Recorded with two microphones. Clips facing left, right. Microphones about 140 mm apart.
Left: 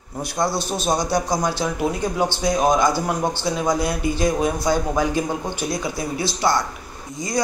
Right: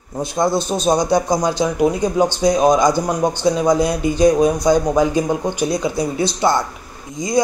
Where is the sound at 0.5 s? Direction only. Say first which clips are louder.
Right 6 dB; 50° right (ahead or behind).